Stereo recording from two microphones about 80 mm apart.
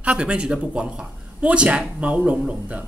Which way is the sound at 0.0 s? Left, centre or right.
Centre.